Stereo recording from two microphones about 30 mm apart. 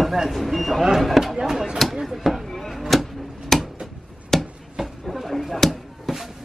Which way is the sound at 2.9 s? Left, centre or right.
Centre.